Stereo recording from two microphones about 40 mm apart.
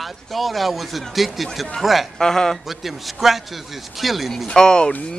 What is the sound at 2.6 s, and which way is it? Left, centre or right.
Speech, centre.